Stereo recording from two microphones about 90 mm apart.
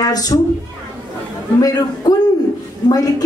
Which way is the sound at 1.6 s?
45° left (ahead or behind).